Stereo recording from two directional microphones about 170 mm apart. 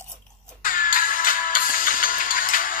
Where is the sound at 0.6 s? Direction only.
55° left (ahead or behind).